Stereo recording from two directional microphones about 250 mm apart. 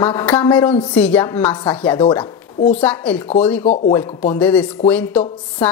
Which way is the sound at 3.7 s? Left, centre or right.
Left.